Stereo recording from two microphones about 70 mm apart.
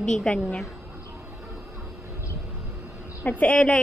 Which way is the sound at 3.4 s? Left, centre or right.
Centre.